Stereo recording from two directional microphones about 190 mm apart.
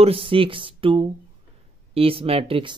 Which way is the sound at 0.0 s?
30° right (ahead or behind).